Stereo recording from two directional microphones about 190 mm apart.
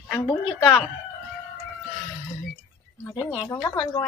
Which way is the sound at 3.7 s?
20° left (ahead or behind).